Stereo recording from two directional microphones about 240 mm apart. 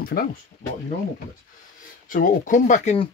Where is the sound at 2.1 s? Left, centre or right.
Left.